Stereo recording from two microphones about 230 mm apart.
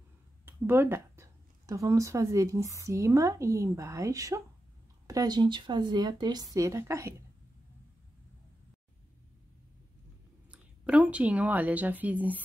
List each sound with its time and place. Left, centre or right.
0.5 s speech: centre
10.5 s a woman's voice: centre